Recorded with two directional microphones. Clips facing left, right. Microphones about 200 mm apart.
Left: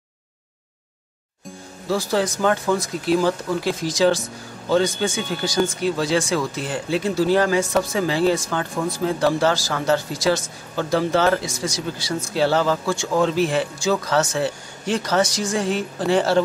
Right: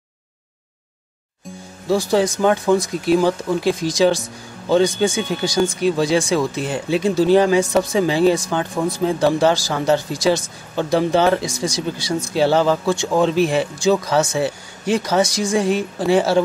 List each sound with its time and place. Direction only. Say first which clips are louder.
1.9 s speech: right 4 dB; 15° right (ahead or behind)